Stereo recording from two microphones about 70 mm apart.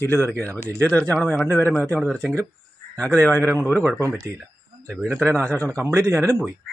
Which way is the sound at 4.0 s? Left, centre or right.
Right.